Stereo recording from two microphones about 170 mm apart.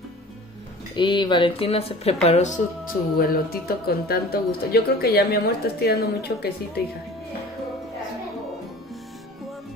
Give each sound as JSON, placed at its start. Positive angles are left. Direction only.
{"t": 0.9, "sound": "speech", "side_deg": 25}
{"t": 3.2, "sound": "speech", "side_deg": 60}